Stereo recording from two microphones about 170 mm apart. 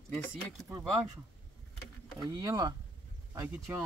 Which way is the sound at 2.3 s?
20° right (ahead or behind).